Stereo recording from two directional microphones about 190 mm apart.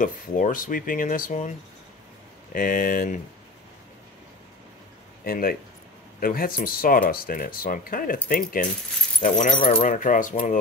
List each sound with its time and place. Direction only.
0.0 s speech: 45° left (ahead or behind)
2.5 s speech: 45° left (ahead or behind)
5.2 s speech: 50° left (ahead or behind)